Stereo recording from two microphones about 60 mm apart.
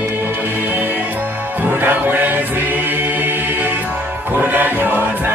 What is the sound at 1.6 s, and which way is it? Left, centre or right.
Music, right.